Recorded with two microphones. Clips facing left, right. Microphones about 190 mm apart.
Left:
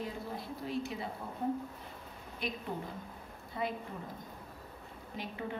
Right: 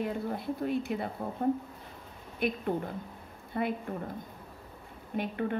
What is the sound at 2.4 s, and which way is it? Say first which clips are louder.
A woman's voice: right 8 dB; 55° right (ahead or behind).